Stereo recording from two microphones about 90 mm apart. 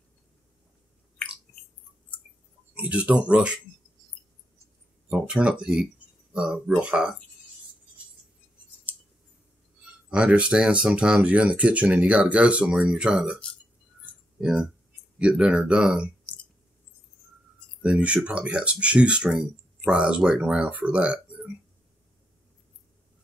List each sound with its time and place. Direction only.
2.7 s speech: 15° right (ahead or behind)
5.1 s speech: 10° right (ahead or behind)
10.0 s speech: 10° right (ahead or behind)
14.4 s speech: 5° right (ahead or behind)
17.8 s speech: 10° right (ahead or behind)